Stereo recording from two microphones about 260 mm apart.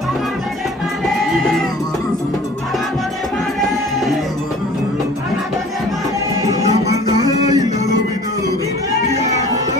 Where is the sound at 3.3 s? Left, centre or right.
Centre.